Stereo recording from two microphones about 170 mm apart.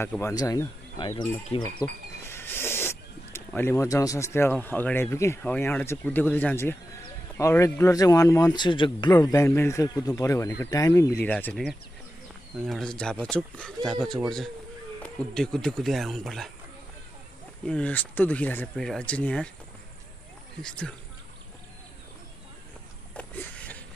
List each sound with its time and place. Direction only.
0.0 s speech: 15° left (ahead or behind)
2.2 s speech: 15° left (ahead or behind); by 9.1 s 30° left (ahead or behind)
9.2 s speech: 15° left (ahead or behind); by 16.5 s centre (ahead or behind)
17.6 s speech: 5° left (ahead or behind)
20.6 s speech: 5° left (ahead or behind)
23.1 s a sound: 10° left (ahead or behind)